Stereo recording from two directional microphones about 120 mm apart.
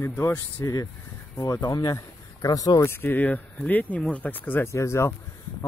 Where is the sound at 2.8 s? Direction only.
20° left (ahead or behind).